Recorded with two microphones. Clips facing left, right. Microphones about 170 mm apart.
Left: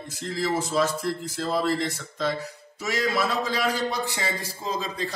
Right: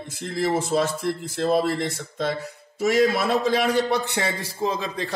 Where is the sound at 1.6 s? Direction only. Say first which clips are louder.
Right 2 dB; 55° right (ahead or behind).